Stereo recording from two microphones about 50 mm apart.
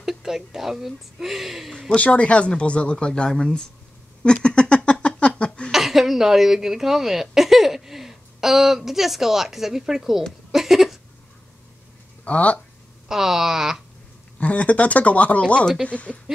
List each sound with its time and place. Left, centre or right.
0.0 s speech: centre
1.7 s speech: centre
2.0 s speech: left
4.2 s a sound: centre
5.7 s speech: centre
10.5 s a sound: centre
12.3 s speech: left
13.1 s speech: centre
14.4 s speech: left
15.4 s speech: centre
15.9 s speech: left